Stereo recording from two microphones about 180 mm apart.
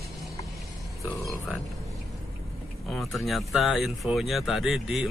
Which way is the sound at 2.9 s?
Centre (ahead or behind).